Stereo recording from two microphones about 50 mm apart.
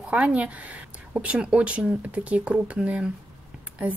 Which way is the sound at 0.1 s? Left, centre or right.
Right.